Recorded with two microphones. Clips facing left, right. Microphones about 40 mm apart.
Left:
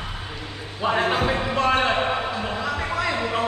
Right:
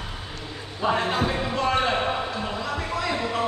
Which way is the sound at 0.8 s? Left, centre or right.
Centre.